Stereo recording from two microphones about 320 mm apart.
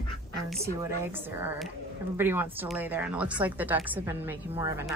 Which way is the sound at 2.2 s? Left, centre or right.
Centre.